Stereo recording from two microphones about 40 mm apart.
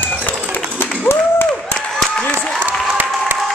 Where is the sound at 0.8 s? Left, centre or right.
Left.